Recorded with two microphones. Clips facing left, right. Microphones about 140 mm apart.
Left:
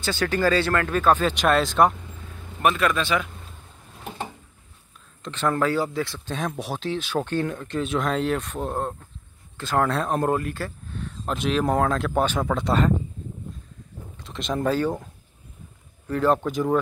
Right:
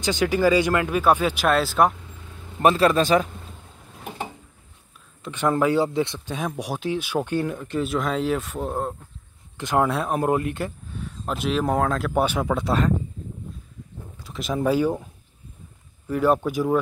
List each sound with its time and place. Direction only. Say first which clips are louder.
0.0 s speech: right 3 dB; 15° right (ahead or behind)
2.6 s a man's voice: right 4 dB; 30° right (ahead or behind)
5.2 s speech: right 2 dB; 15° right (ahead or behind)
6.2 s speech: even; 10° right (ahead or behind)
9.6 s speech: right 1 dB; 15° right (ahead or behind)
10.4 s speech: right 3 dB; 20° right (ahead or behind)
10.9 s speech: even; 10° right (ahead or behind)
14.2 s speech: right 1 dB; 5° right (ahead or behind)
16.1 s speech: right 1 dB; 10° right (ahead or behind)